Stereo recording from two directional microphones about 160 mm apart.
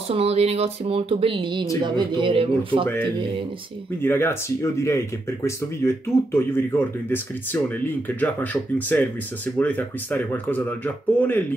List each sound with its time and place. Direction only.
0.1 s a man's voice: 40° right (ahead or behind)
4.0 s speech: 15° left (ahead or behind)